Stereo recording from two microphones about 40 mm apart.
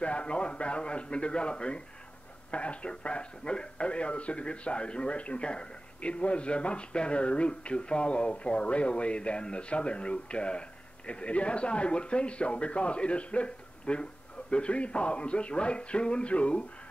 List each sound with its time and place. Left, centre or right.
0.0 s a man's voice: left